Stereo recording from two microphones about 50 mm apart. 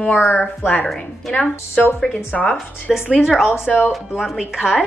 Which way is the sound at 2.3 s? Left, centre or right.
Centre.